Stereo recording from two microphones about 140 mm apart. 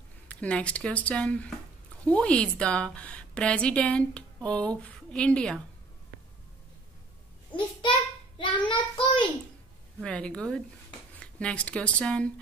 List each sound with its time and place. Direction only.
0.3 s a woman's voice: 10° left (ahead or behind)
8.4 s child singing: 35° left (ahead or behind)
10.0 s a woman's voice: 5° left (ahead or behind)